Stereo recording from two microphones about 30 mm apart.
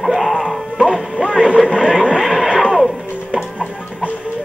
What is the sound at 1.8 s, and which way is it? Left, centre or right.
Vehicle, centre.